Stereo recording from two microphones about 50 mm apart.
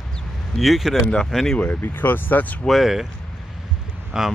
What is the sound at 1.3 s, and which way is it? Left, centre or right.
Speech, centre.